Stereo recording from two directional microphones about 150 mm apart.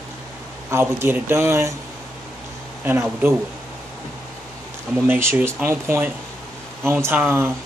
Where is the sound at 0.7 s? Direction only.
15° right (ahead or behind).